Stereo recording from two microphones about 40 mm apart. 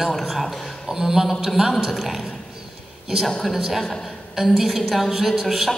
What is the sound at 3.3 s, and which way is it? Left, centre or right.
Speech, centre.